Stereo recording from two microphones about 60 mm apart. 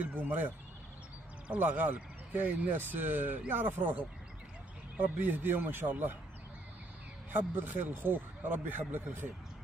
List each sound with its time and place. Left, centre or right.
0.0 s speech: right
1.5 s speech: right
4.9 s speech: right
7.3 s speech: right